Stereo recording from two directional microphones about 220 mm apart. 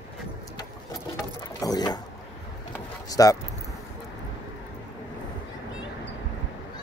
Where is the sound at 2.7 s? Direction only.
15° left (ahead or behind).